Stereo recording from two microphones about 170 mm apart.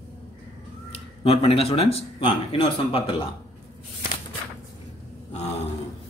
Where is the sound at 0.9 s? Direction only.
35° left (ahead or behind).